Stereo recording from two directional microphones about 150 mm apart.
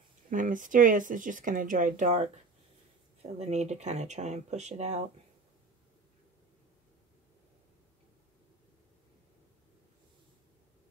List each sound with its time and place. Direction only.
0.3 s speech: 60° right (ahead or behind)
3.2 s speech: 45° right (ahead or behind)